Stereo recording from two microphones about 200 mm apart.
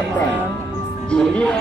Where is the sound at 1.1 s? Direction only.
5° left (ahead or behind).